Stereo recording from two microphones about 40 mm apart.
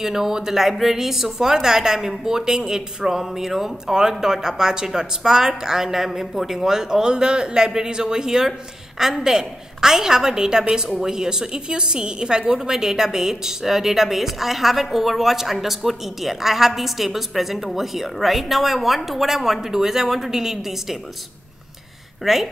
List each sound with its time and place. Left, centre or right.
0.0 s a woman's voice: centre
22.2 s speech: centre